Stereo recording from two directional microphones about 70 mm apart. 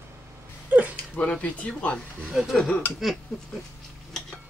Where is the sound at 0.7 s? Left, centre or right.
Centre.